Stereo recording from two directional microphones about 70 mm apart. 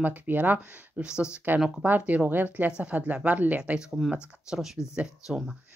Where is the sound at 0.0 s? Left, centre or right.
Right.